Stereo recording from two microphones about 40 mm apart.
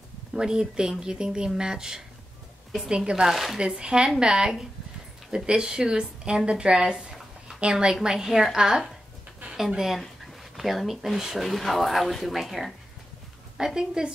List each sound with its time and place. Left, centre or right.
0.3 s a woman's voice: centre
13.6 s speech: centre